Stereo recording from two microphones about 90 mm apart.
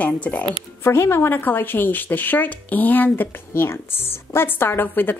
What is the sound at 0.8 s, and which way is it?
Speech, 30° left (ahead or behind).